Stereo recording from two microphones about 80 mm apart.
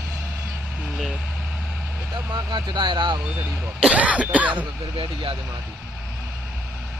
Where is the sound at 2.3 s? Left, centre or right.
Right.